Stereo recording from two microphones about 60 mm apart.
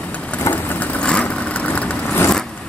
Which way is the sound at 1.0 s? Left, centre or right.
Centre.